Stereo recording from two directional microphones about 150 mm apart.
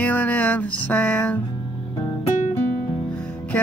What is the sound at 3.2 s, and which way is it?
Music, 10° left (ahead or behind).